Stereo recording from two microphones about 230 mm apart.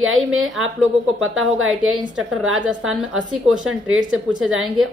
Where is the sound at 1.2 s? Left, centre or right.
Right.